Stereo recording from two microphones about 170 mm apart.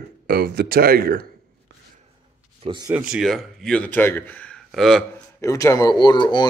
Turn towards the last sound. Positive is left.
turn(degrees=25)  # may be behind; listen again after turning